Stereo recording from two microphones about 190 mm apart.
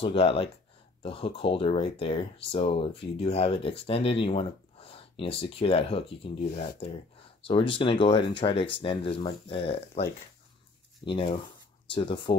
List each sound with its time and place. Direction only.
0.0 s speech: 30° left (ahead or behind)
11.1 s speech: 25° left (ahead or behind)